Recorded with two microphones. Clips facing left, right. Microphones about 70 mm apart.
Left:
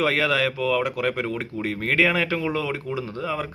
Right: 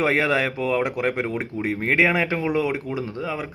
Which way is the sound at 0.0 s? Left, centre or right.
Right.